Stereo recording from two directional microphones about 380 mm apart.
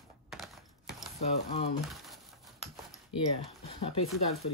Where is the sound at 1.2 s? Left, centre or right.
Centre.